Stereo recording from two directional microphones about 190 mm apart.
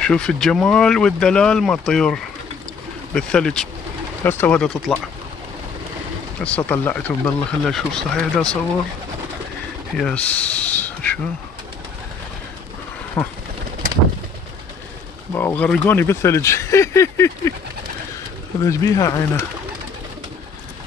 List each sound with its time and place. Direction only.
0.0 s speech: 5° left (ahead or behind)
6.4 s speech: 10° left (ahead or behind)
9.9 s speech: 5° left (ahead or behind)
13.2 s speech: 10° left (ahead or behind)
15.3 s speech: 10° left (ahead or behind)
18.6 s speech: 15° left (ahead or behind)